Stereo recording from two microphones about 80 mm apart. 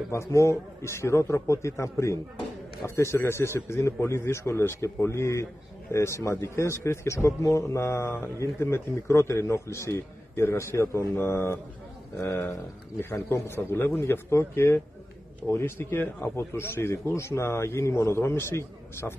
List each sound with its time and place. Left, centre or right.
0.1 s a man's voice: left